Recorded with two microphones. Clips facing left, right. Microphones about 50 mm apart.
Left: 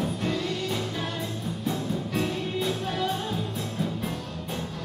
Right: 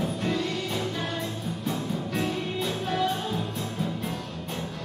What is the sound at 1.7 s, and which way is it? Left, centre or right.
Music, centre.